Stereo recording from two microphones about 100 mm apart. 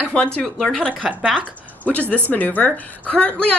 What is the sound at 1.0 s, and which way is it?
Speech, 5° right (ahead or behind).